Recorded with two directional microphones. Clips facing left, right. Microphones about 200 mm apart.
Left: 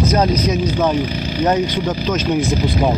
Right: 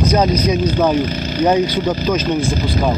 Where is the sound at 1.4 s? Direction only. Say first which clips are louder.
Right 3 dB; 5° right (ahead or behind).